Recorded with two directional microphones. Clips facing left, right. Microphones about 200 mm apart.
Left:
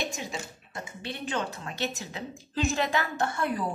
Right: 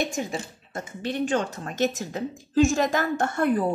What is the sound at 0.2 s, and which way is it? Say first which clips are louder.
A woman's voice: right 7 dB; 50° right (ahead or behind).